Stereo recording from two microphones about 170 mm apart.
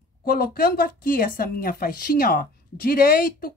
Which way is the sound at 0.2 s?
60° left (ahead or behind).